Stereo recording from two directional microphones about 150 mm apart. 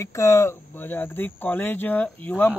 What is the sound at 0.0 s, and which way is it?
A man's voice, 20° left (ahead or behind).